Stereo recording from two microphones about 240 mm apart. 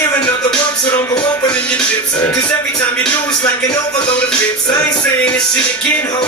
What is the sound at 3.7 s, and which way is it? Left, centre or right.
Music, centre.